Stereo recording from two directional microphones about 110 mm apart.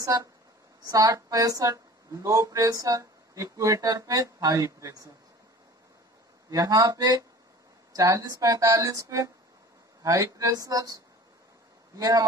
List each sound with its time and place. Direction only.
0.0 s speech: 30° right (ahead or behind)
6.5 s speech: 30° right (ahead or behind)
12.0 s speech: 35° right (ahead or behind)